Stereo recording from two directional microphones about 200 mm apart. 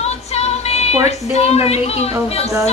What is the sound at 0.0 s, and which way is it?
A woman's voice, 30° left (ahead or behind).